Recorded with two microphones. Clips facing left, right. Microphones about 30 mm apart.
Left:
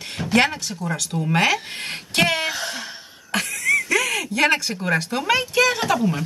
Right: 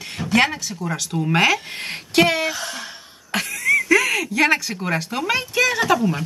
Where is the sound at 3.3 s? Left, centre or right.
Right.